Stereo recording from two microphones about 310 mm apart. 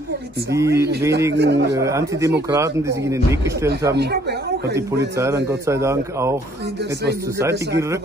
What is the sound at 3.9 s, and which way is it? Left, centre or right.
Speech, right.